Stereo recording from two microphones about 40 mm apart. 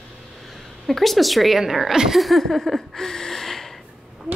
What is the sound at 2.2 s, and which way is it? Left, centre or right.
Speech, centre.